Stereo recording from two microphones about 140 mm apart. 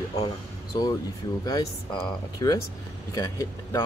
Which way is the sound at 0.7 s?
30° left (ahead or behind).